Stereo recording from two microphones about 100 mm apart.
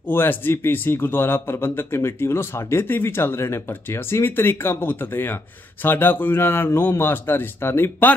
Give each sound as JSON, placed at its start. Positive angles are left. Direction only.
{"t": 0.1, "sound": "a man's voice", "side_deg": 20}